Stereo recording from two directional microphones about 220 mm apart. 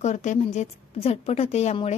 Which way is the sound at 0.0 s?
30° left (ahead or behind).